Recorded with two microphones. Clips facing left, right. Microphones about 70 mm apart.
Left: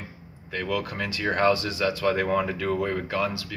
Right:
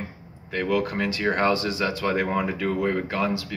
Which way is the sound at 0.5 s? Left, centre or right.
Right.